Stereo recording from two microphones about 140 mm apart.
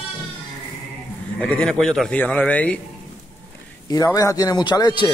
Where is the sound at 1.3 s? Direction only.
10° left (ahead or behind).